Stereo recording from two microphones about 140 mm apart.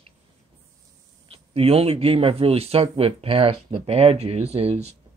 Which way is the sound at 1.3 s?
45° right (ahead or behind).